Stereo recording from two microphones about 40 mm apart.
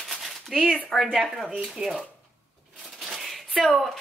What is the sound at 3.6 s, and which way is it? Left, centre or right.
Speech, centre.